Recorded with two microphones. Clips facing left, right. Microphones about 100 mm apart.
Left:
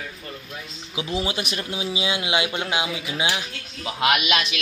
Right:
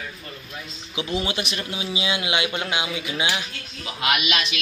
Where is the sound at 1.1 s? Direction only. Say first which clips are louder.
Even; 30° left (ahead or behind).